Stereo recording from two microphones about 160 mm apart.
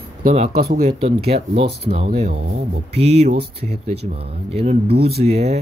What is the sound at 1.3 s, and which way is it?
Speech, 40° right (ahead or behind).